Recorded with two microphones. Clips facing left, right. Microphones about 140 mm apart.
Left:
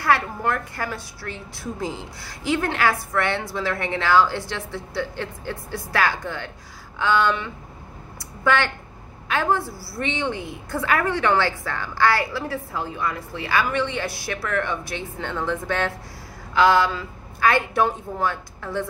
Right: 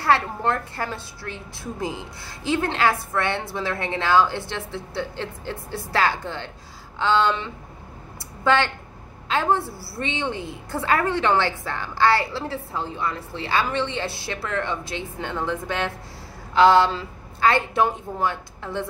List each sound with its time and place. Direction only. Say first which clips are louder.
0.0 s a woman's voice: right 1 dB; 25° right (ahead or behind)